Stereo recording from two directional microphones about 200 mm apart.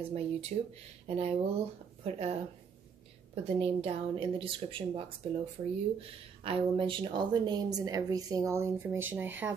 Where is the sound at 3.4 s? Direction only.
30° right (ahead or behind).